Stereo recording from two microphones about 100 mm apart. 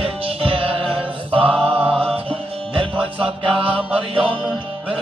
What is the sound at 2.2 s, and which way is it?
Music, 65° right (ahead or behind).